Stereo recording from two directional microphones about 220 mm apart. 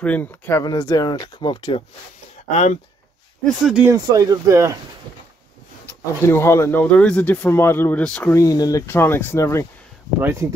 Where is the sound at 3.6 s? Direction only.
5° right (ahead or behind).